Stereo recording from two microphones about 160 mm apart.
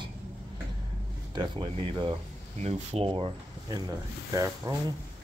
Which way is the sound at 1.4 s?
35° right (ahead or behind).